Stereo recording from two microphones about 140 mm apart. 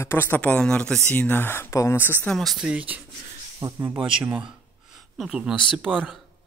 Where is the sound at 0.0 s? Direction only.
15° left (ahead or behind).